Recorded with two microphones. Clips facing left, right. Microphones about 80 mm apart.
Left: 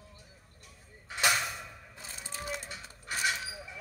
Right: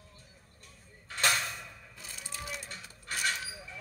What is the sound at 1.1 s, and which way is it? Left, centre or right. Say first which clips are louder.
Mechanisms: left 1 dB; centre.